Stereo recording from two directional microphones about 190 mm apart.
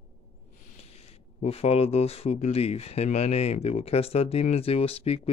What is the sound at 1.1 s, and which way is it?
Speech, 35° left (ahead or behind).